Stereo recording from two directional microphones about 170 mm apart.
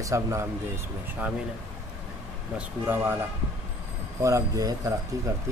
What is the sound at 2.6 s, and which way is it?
Speech, 10° right (ahead or behind).